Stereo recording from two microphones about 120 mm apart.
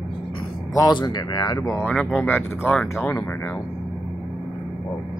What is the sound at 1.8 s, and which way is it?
Speech, 10° left (ahead or behind).